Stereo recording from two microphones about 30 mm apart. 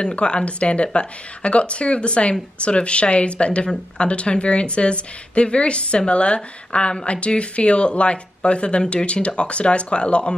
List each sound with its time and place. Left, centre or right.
0.0 s a woman's voice: left